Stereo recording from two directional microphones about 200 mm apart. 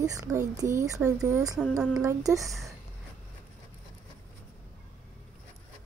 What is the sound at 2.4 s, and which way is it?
Speech, centre (ahead or behind).